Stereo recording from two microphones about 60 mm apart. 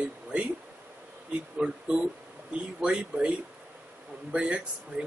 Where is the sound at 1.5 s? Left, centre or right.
Centre.